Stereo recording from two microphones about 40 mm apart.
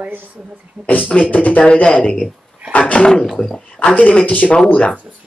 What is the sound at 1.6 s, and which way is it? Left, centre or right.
Speech, left.